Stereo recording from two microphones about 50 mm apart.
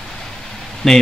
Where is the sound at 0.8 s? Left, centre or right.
Centre.